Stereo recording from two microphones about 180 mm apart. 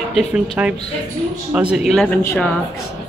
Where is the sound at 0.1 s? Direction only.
Centre (ahead or behind).